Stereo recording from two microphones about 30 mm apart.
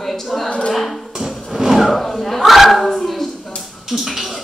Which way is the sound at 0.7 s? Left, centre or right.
Centre.